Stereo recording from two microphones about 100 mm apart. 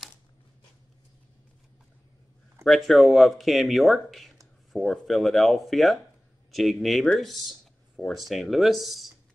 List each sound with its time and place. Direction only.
2.6 s speech: centre (ahead or behind)